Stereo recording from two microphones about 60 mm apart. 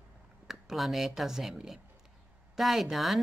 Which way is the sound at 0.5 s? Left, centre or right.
Centre.